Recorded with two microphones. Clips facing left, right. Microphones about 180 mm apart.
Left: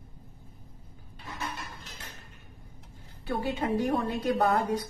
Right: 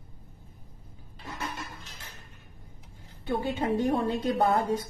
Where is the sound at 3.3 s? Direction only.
25° right (ahead or behind).